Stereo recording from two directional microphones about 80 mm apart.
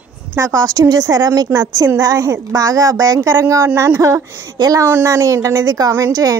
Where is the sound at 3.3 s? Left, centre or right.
Right.